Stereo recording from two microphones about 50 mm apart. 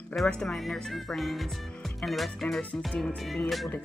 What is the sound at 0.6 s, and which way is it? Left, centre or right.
Speech, centre.